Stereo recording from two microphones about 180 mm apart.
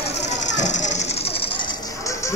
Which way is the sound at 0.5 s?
40° left (ahead or behind).